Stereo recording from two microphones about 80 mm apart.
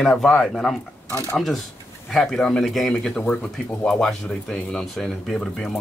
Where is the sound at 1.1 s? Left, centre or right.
Left.